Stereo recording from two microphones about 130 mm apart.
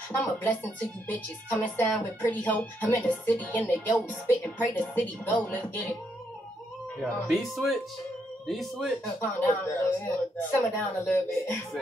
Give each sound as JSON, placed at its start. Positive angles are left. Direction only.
{"t": 0.1, "sound": "speech", "side_deg": 15}
{"t": 7.2, "sound": "speech", "side_deg": 0}
{"t": 9.2, "sound": "speech", "side_deg": 15}